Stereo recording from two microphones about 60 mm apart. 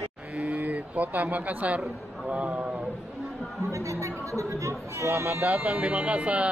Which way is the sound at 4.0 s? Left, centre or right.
Right.